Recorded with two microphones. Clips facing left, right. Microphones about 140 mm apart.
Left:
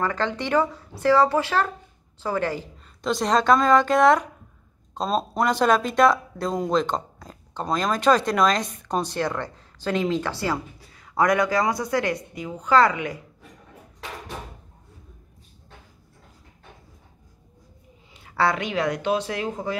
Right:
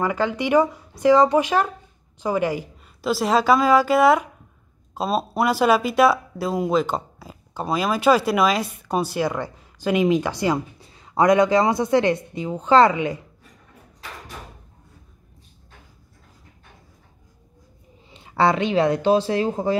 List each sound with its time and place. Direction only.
0.0 s a woman's voice: 10° right (ahead or behind)
18.1 s speech: 20° right (ahead or behind)